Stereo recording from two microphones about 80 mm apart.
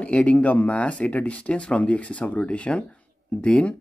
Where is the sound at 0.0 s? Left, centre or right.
Centre.